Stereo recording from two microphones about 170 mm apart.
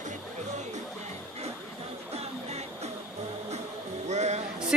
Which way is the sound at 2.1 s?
40° right (ahead or behind).